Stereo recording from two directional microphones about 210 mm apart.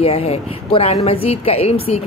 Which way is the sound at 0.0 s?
30° left (ahead or behind).